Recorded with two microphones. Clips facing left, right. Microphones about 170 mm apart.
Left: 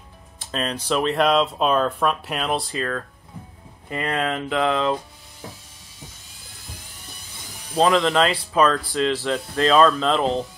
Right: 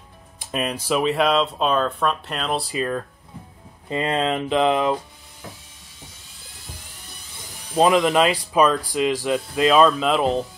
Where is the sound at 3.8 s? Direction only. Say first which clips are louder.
Right 3 dB; 20° right (ahead or behind).